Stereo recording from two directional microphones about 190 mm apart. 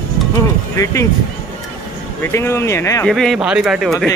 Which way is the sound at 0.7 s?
15° left (ahead or behind).